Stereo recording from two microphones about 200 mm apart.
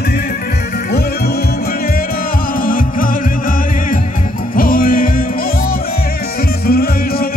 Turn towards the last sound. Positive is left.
turn(degrees=50)  # may be behind; listen again after turning